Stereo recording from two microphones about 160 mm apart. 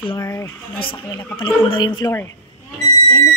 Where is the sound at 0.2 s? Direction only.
15° left (ahead or behind).